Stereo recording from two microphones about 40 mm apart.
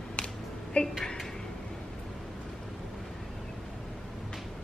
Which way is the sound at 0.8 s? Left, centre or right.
Left.